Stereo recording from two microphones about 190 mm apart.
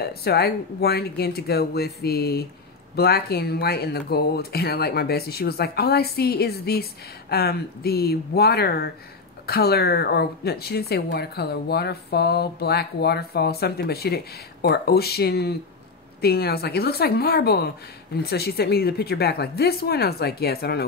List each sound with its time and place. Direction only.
0.0 s speech: 55° left (ahead or behind)